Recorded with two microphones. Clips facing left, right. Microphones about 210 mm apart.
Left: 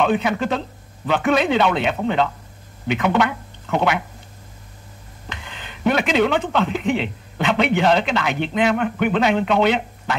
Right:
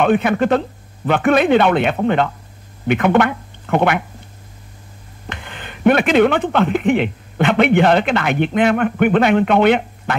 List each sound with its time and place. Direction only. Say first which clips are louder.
0.0 s speech: right 4 dB; 55° right (ahead or behind)
5.3 s speech: right 4 dB; 55° right (ahead or behind)